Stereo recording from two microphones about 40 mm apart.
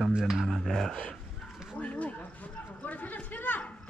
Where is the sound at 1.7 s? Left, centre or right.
Left.